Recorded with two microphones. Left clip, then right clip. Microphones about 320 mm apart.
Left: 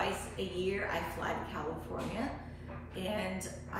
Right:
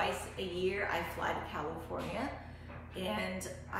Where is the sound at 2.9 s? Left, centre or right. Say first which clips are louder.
Even; centre.